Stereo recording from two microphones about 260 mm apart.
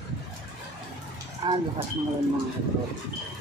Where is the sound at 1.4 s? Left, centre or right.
Centre.